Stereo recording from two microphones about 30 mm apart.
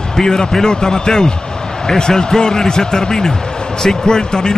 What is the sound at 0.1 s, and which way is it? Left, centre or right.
A man's voice, left.